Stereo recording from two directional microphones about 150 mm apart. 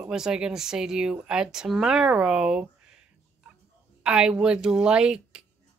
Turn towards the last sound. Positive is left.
turn(degrees=-5)  # may be behind; listen again after turning